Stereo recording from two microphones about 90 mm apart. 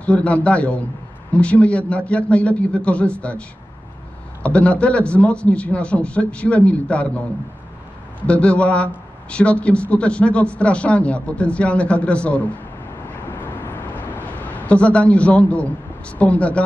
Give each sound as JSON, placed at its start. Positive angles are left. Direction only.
{"t": 0.0, "sound": "a man's voice", "side_deg": 15}
{"t": 8.3, "sound": "a man's voice", "side_deg": 15}
{"t": 13.4, "sound": "vehicle", "side_deg": 25}
{"t": 14.7, "sound": "a man's voice", "side_deg": 15}